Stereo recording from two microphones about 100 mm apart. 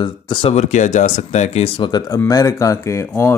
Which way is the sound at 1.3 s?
90° left.